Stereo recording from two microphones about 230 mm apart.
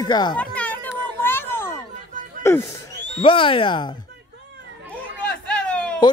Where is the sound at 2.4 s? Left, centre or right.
Centre.